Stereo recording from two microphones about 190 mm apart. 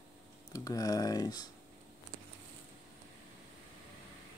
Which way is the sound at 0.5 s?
20° left (ahead or behind).